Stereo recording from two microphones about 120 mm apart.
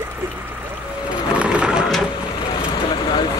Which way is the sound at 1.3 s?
10° right (ahead or behind).